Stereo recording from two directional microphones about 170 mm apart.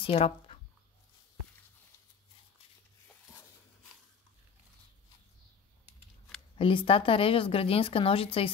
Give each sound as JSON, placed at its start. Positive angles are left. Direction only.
{"t": 0.0, "sound": "speech", "side_deg": 35}
{"t": 6.6, "sound": "speech", "side_deg": 30}